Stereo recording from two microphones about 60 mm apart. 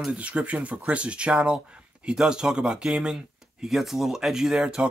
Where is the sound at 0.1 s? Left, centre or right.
Right.